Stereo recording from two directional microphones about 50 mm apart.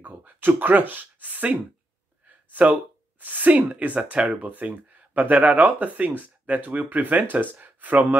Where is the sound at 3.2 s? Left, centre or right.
Right.